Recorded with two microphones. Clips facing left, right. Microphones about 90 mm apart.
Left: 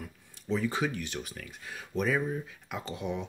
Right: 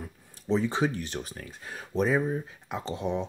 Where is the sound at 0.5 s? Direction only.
25° right (ahead or behind).